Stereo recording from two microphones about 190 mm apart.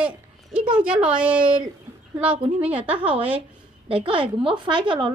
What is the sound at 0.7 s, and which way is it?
A woman's voice, 5° right (ahead or behind).